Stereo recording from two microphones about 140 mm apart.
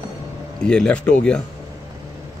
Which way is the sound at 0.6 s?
5° left (ahead or behind).